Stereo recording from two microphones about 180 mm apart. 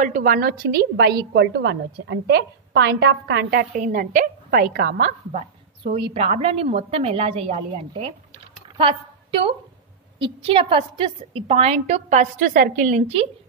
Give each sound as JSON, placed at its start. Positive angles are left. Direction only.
{"t": 0.0, "sound": "a woman's voice", "side_deg": -45}
{"t": 10.1, "sound": "a woman's voice", "side_deg": -30}